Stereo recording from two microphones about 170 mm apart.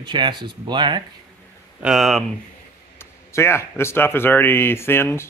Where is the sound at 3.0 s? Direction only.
15° left (ahead or behind).